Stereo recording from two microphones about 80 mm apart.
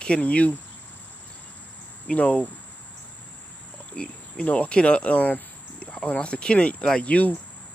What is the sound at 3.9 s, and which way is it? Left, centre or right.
Speech, centre.